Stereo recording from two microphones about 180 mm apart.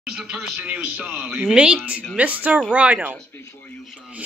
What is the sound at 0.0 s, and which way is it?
Speech, 5° right (ahead or behind).